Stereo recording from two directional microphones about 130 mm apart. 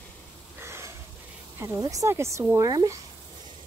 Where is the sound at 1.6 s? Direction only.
25° right (ahead or behind).